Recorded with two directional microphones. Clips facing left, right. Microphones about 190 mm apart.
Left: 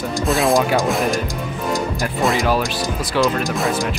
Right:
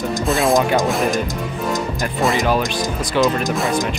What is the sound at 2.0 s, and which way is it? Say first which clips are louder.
Speech: right 1 dB; centre (ahead or behind).